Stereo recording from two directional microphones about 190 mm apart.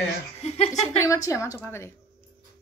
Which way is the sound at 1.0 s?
15° left (ahead or behind).